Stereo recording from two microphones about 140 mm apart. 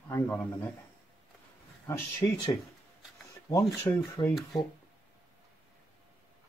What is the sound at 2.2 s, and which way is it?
Speech, 20° left (ahead or behind).